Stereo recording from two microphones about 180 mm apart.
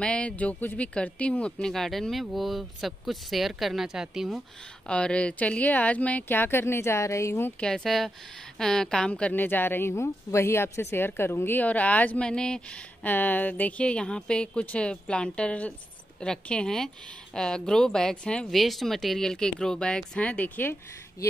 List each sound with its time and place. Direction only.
0.0 s a woman's voice: 5° left (ahead or behind)